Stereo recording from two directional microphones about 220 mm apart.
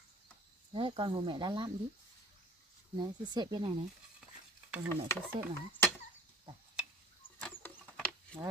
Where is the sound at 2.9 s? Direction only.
20° right (ahead or behind).